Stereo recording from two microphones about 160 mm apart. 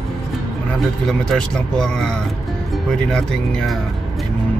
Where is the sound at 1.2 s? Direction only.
5° left (ahead or behind).